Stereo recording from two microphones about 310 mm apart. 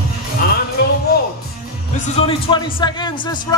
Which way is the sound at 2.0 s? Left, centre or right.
Centre.